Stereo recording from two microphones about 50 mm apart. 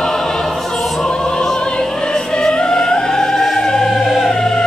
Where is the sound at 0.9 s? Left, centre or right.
Centre.